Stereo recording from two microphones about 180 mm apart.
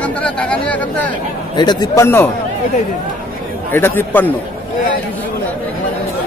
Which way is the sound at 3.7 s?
10° left (ahead or behind).